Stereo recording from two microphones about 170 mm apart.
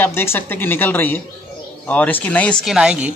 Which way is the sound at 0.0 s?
15° left (ahead or behind).